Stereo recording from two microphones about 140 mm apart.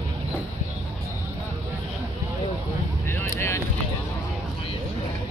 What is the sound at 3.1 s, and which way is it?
Vehicle, 20° left (ahead or behind).